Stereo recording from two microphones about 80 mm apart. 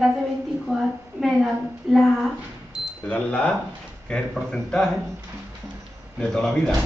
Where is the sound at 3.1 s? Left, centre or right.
Centre.